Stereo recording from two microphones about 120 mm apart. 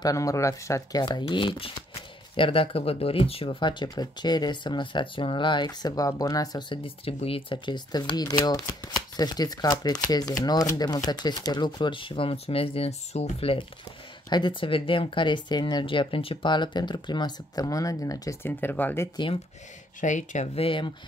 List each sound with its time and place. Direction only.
0.0 s speech: 30° left (ahead or behind)
1.0 s speech: 40° left (ahead or behind)
6.7 s speech: 50° left (ahead or behind)
14.3 s speech: 40° left (ahead or behind)
18.4 s speech: 15° left (ahead or behind)
20.0 s speech: 90° left
20.5 s speech: 45° left (ahead or behind)